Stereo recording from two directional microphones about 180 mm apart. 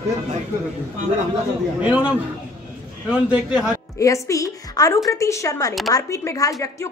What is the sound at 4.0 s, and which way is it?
A woman's voice, 15° left (ahead or behind).